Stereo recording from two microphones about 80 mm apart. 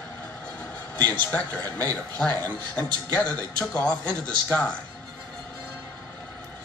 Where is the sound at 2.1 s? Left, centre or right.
Left.